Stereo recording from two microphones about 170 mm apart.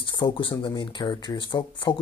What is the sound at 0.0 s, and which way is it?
Speech, 30° left (ahead or behind).